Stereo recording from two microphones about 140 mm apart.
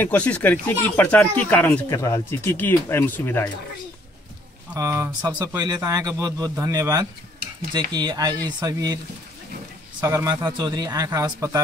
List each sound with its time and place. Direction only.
0.0 s speech: 10° left (ahead or behind)
4.7 s speech: 20° right (ahead or behind)
5.6 s speech: 25° right (ahead or behind)